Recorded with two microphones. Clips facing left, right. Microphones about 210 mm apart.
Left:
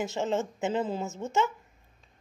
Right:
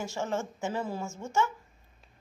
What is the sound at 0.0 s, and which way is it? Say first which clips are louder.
A woman's voice: left 4 dB; 20° left (ahead or behind).